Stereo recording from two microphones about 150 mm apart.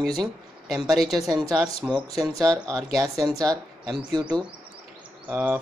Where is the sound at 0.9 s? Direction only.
Centre (ahead or behind).